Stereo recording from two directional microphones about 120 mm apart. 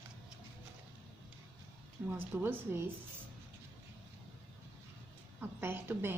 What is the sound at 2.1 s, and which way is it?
Speech, 15° right (ahead or behind).